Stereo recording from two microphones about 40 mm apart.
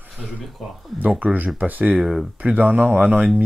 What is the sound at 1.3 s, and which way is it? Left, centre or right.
Speech, right.